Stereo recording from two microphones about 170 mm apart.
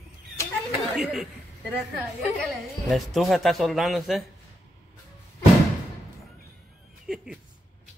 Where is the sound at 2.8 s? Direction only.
Centre (ahead or behind).